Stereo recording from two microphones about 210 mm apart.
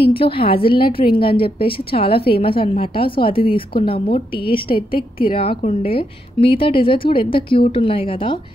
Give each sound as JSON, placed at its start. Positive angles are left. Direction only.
{"t": 0.1, "sound": "a woman's voice", "side_deg": 25}
{"t": 4.7, "sound": "a woman's voice", "side_deg": 45}
{"t": 5.3, "sound": "a woman's voice", "side_deg": 25}